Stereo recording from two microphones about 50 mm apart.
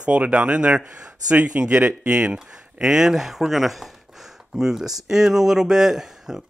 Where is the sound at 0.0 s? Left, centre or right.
Right.